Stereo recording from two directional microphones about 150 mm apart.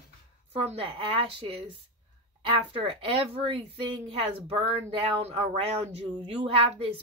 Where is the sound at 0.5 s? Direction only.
40° right (ahead or behind).